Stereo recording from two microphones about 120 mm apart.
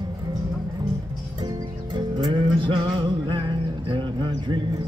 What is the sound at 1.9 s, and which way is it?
Music, 40° right (ahead or behind).